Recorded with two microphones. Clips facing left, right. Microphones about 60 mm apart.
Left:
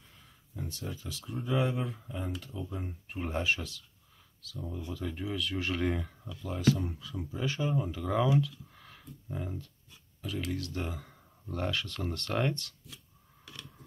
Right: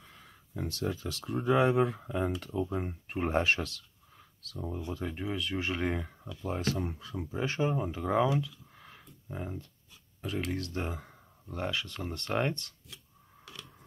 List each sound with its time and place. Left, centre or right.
0.7 s speech: right
4.5 s speech: right; by 6.1 s centre
6.4 s speech: right
7.2 s speech: right
8.4 s speech: centre
10.2 s speech: right
11.5 s speech: centre